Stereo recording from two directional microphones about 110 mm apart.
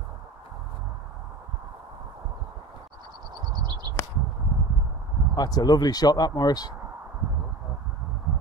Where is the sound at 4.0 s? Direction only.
20° left (ahead or behind).